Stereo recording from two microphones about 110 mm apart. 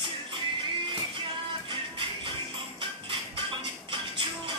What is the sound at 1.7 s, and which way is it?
Music, 50° right (ahead or behind).